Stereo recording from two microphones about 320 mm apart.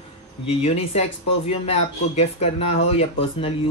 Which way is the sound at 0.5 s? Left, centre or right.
Centre.